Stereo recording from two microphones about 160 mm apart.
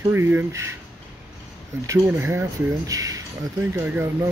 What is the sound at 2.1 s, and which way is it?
Speech, 15° right (ahead or behind).